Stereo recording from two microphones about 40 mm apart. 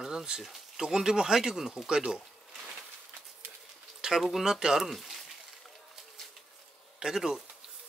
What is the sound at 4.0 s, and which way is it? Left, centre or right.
Speech, centre.